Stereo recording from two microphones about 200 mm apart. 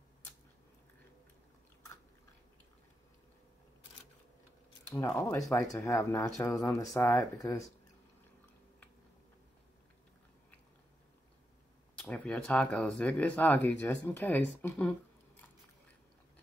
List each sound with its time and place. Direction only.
4.9 s speech: 15° left (ahead or behind)
12.0 s speech: 5° left (ahead or behind)